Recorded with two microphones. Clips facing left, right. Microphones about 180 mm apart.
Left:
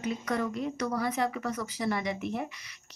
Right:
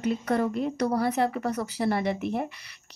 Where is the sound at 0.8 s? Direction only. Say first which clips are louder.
Right 5 dB; 35° right (ahead or behind).